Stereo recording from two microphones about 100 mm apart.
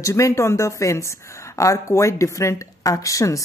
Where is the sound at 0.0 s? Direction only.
30° left (ahead or behind).